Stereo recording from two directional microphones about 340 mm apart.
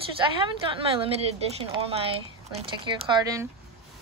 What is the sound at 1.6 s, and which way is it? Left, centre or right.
Speech, centre.